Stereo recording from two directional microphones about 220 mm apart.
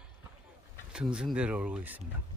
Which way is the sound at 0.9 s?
5° right (ahead or behind).